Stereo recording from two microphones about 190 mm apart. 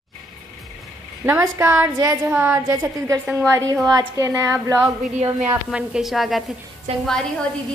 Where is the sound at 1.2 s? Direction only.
15° right (ahead or behind).